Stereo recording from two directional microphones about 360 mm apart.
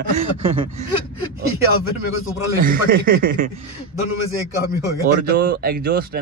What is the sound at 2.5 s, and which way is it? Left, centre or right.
Speech, right.